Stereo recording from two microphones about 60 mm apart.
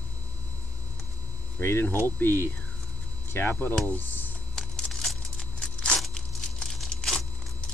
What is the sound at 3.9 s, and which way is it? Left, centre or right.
Computer keyboard, left.